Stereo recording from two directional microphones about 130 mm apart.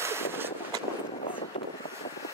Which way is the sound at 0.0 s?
20° right (ahead or behind).